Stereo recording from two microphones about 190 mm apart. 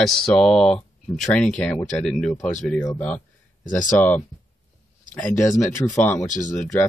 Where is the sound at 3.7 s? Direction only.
45° left (ahead or behind).